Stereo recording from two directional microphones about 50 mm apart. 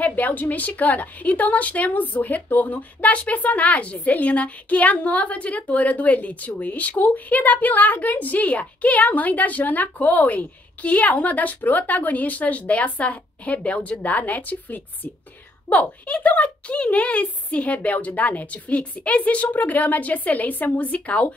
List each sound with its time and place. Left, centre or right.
0.0 s a woman's voice: left